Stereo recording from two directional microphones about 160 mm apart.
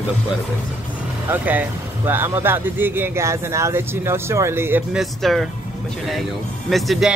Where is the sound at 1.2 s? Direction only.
10° right (ahead or behind).